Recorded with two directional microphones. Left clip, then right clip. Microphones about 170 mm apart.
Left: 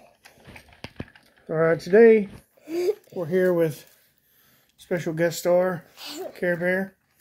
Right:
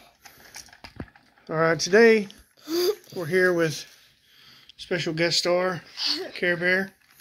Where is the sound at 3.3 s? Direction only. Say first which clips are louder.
Even; 30° left (ahead or behind).